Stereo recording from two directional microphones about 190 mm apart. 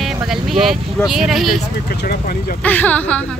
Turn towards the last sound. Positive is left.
turn(degrees=5)  # may be behind; listen again after turning